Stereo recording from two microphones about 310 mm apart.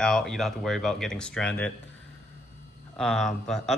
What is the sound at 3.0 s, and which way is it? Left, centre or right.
Speech, centre.